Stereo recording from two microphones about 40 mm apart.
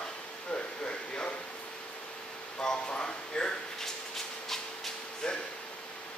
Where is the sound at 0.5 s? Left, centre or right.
Left.